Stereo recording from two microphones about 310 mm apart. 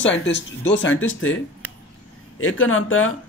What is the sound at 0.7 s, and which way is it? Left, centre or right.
Speech, left.